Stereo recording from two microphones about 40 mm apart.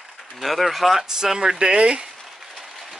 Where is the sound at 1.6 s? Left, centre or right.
Right.